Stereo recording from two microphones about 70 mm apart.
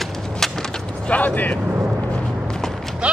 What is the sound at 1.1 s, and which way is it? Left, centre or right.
Vehicle, left.